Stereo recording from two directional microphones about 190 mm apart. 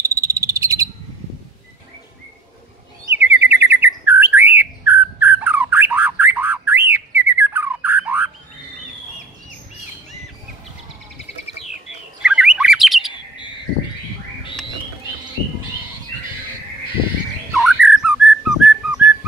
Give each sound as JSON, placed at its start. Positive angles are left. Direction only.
{"t": 0.0, "sound": "cricket", "side_deg": -15}
{"t": 3.2, "sound": "chirp", "side_deg": -10}
{"t": 3.8, "sound": "bird", "side_deg": -10}
{"t": 12.2, "sound": "bird", "side_deg": -5}
{"t": 17.6, "sound": "whistling", "side_deg": 0}